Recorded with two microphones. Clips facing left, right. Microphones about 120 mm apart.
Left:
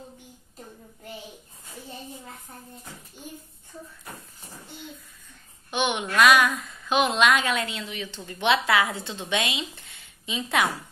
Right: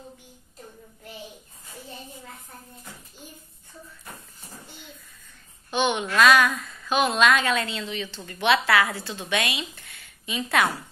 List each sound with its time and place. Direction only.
5.7 s a child's voice: 15° left (ahead or behind)